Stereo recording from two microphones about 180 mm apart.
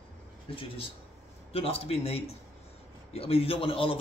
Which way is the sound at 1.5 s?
35° left (ahead or behind).